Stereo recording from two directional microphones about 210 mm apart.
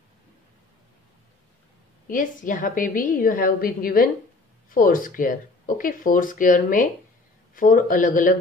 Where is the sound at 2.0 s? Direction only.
40° left (ahead or behind).